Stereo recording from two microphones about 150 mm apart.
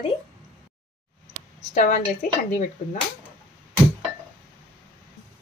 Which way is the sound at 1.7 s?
60° left (ahead or behind).